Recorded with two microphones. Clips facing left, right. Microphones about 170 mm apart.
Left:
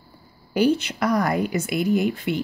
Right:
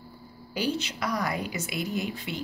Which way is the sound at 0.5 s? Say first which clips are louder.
Left 10 dB; 55° left (ahead or behind).